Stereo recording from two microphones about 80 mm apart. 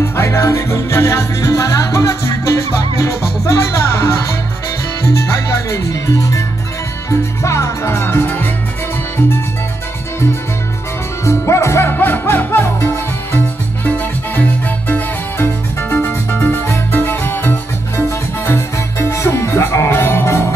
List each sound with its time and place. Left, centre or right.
0.0 s music: left
5.9 s speech: left
7.1 s music: left
11.2 s music: left